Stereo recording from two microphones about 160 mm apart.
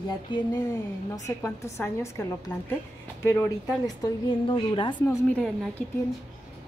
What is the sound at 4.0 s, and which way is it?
Speech, 30° left (ahead or behind).